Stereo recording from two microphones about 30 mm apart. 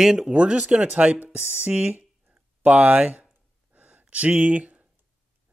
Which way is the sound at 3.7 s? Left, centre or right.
Right.